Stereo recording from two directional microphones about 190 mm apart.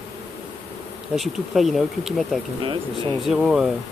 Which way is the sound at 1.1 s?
Centre (ahead or behind).